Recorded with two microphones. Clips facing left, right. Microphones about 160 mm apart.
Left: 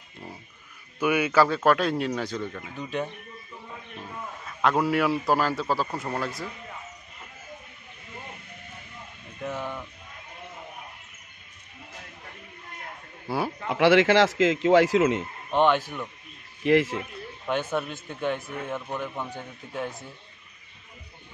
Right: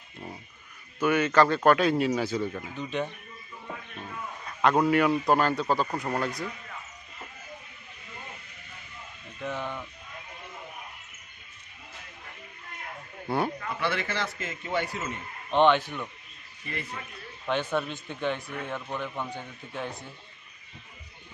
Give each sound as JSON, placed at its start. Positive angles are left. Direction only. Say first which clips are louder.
{"t": 0.9, "sound": "a man's voice", "louder": "even", "side_deg": 10}
{"t": 4.5, "sound": "a man's voice", "louder": "right 1 dB", "side_deg": 0}
{"t": 9.4, "sound": "speech", "louder": "left 1 dB", "side_deg": 10}
{"t": 13.3, "sound": "a man's voice", "louder": "even", "side_deg": 5}
{"t": 13.7, "sound": "a man's voice", "louder": "left 12 dB", "side_deg": 90}
{"t": 15.5, "sound": "speech", "louder": "even", "side_deg": 10}
{"t": 16.6, "sound": "a man's voice", "louder": "left 17 dB", "side_deg": 90}
{"t": 17.5, "sound": "speech", "louder": "left 1 dB", "side_deg": 5}